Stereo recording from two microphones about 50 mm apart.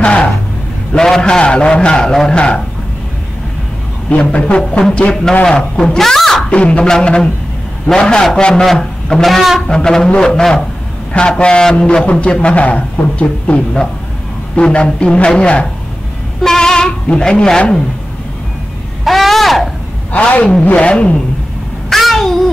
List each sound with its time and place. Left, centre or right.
0.0 s a sound: left
0.9 s a man's voice: centre
1.4 s a man's voice: left
4.1 s a man's voice: left; by 6.4 s centre
6.5 s a man's voice: left
9.2 s a sound: centre
9.7 s a man's voice: centre
19.0 s speech: centre
20.1 s a man's voice: left
21.8 s a sound: centre